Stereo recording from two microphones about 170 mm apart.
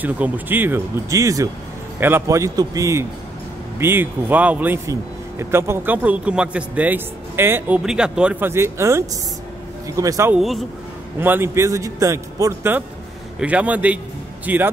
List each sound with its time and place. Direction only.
0.0 s a man's voice: 10° right (ahead or behind)
10.3 s speech: centre (ahead or behind)
11.1 s a man's voice: 15° right (ahead or behind)